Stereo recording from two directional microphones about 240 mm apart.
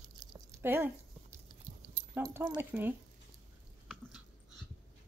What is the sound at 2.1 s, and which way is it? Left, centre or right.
Speech, centre.